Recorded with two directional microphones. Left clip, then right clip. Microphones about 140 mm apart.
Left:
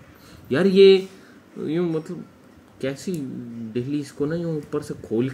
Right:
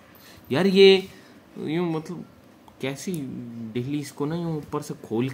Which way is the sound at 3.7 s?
35° right (ahead or behind).